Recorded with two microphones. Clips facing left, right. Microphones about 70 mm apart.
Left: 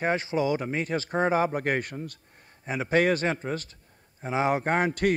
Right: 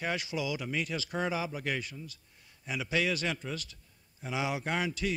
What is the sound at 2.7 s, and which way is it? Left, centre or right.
A man's voice, left.